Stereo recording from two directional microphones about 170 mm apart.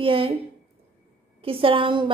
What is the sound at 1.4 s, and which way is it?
Speech, 35° right (ahead or behind).